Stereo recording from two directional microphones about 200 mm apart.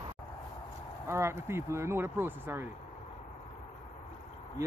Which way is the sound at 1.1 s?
15° right (ahead or behind).